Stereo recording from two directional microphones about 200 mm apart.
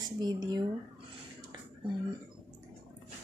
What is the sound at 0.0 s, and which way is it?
Speech, 20° right (ahead or behind).